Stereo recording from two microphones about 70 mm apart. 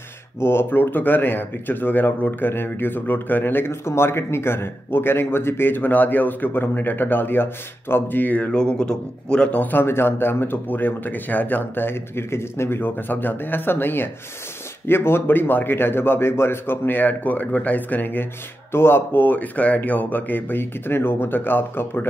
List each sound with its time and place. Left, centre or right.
0.4 s speech: left; by 9.6 s centre
9.6 s speech: left